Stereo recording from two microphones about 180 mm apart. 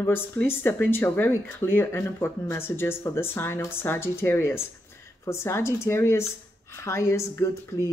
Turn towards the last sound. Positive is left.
turn(degrees=15)  # may be behind; listen again after turning